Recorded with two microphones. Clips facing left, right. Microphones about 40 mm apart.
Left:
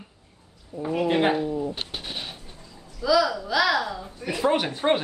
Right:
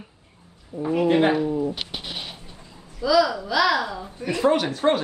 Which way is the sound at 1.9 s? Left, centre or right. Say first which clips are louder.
Right 1 dB; right.